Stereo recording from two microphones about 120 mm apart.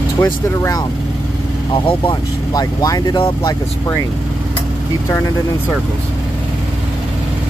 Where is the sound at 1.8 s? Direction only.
50° left (ahead or behind).